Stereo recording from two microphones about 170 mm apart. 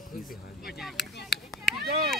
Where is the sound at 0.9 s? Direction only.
75° left (ahead or behind).